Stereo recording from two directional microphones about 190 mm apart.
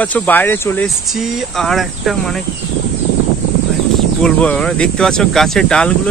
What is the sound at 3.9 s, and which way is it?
Speech, 5° left (ahead or behind).